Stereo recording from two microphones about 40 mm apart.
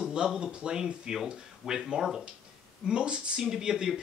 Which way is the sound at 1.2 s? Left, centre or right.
Centre.